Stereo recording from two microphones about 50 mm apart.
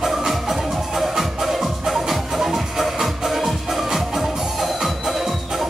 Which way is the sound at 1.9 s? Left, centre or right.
Centre.